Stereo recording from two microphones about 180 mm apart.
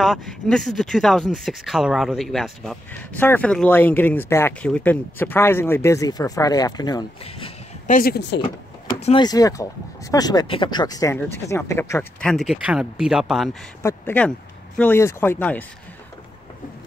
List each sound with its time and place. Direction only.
0.0 s speech: centre (ahead or behind); by 7.5 s 25° left (ahead or behind)
7.8 s speech: 45° left (ahead or behind)
8.1 s speech: 75° left (ahead or behind)
9.0 s speech: 25° left (ahead or behind); by 13.6 s centre (ahead or behind)
13.8 s speech: 10° left (ahead or behind)